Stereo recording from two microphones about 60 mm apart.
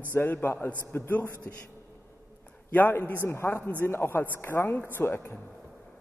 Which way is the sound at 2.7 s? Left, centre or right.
Left.